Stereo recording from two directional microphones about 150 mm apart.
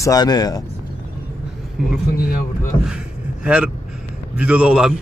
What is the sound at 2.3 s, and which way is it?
Speech, 75° left (ahead or behind).